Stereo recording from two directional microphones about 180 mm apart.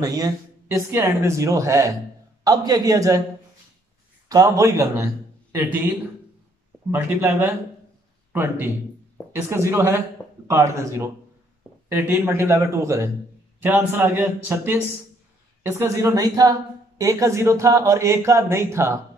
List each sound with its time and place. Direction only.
0.0 s a woman's voice: 20° right (ahead or behind)
4.3 s a man's voice: 20° right (ahead or behind)